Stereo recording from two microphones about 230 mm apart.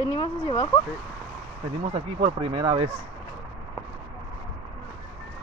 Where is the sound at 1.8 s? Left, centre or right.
Right.